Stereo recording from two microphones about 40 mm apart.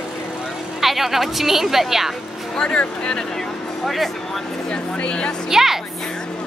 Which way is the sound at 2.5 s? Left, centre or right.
Left.